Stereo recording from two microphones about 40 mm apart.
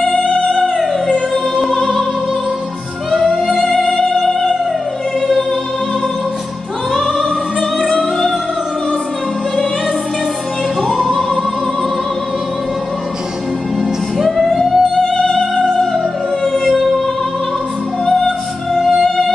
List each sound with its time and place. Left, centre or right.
0.2 s music: left
1.3 s music: centre
3.2 s music: centre
7.8 s music: centre
10.8 s music: centre
14.1 s music: centre
15.2 s music: centre
16.5 s music: centre
18.7 s music: centre